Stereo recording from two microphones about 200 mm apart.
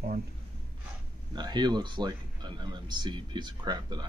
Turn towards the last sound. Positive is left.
turn(degrees=-20)  # may be behind; listen again after turning